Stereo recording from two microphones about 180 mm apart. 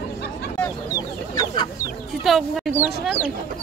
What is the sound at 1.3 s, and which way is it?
Chicken, 25° left (ahead or behind).